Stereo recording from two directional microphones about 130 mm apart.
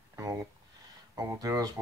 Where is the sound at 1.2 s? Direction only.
25° right (ahead or behind).